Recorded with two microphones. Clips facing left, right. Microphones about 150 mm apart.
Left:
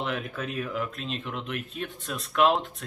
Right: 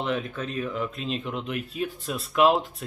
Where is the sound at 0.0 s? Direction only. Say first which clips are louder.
Right 3 dB; centre (ahead or behind).